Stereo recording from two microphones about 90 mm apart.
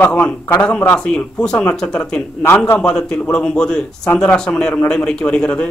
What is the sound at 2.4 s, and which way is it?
Speech, 20° left (ahead or behind).